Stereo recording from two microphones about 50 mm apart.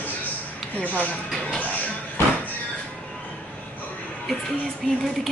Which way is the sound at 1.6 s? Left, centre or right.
Left.